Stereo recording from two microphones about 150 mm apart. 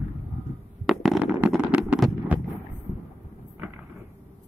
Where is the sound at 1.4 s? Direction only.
10° right (ahead or behind).